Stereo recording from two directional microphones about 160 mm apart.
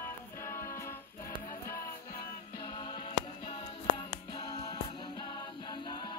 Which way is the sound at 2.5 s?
25° left (ahead or behind).